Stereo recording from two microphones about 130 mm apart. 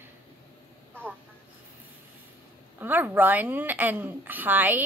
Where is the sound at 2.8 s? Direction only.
15° right (ahead or behind).